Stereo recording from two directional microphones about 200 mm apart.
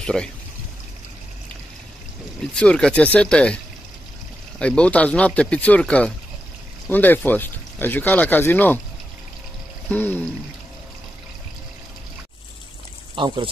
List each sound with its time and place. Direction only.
0.0 s speech: 5° left (ahead or behind)
2.5 s speech: 5° left (ahead or behind)
9.8 s speech: 10° left (ahead or behind)
13.1 s speech: 25° right (ahead or behind)